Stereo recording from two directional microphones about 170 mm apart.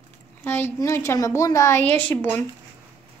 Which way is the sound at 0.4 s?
15° left (ahead or behind).